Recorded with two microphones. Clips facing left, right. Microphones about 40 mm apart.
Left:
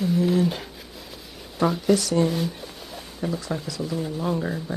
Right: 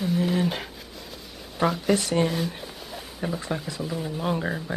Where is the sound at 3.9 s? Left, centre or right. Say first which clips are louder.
Left 4 dB; centre.